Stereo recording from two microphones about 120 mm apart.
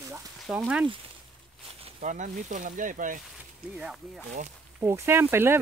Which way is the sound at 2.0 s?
90° right.